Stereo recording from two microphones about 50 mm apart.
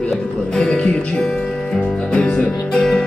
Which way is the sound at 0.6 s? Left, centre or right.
Centre.